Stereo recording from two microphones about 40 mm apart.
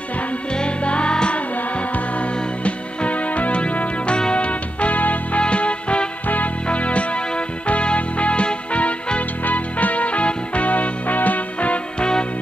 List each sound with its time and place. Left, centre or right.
0.5 s music: left
5.4 s music: left
6.2 s music: left
9.4 s music: left
12.0 s music: left